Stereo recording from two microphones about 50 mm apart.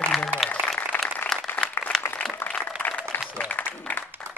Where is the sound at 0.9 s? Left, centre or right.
Left.